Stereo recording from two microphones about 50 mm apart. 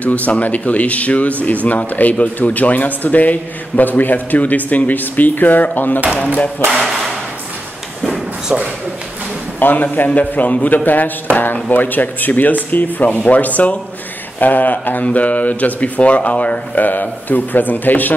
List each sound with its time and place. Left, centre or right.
0.0 s speech: left
6.6 s speech: right
8.5 s a man's voice: centre
9.6 s speech: left